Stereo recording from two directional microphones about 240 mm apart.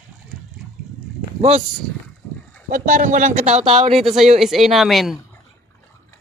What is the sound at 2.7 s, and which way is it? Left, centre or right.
A man's voice, right.